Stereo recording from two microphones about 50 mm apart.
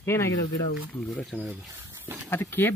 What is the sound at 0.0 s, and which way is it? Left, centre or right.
Speech, left.